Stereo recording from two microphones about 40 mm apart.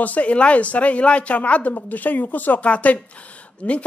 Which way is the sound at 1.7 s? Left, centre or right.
Left.